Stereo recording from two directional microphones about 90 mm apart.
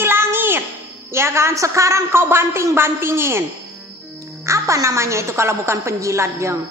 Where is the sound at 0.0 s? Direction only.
25° right (ahead or behind).